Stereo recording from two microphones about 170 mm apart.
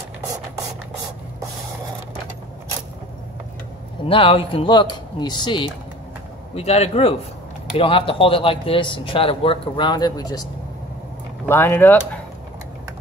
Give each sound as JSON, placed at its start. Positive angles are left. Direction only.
{"t": 4.0, "sound": "speech", "side_deg": 30}
{"t": 6.5, "sound": "speech", "side_deg": 40}
{"t": 11.4, "sound": "speech", "side_deg": 15}